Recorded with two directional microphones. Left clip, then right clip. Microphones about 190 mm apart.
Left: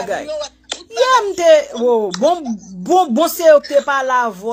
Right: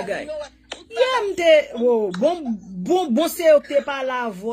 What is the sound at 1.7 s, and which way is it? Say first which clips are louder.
Speech: left 4 dB; 5° right (ahead or behind).